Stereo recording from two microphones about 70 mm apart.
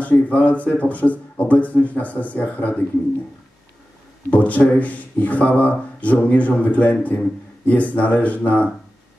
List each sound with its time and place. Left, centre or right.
0.0 s speech: left
4.3 s speech: left